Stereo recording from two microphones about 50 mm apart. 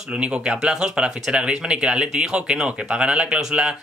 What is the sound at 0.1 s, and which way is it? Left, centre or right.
A man's voice, right.